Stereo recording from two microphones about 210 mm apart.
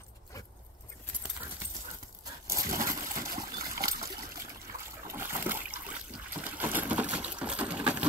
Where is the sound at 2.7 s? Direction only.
40° right (ahead or behind).